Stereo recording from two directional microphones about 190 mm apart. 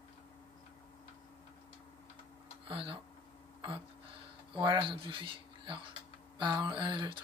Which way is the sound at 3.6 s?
25° right (ahead or behind).